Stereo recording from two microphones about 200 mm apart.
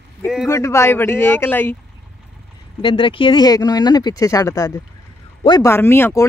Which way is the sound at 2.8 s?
25° left (ahead or behind).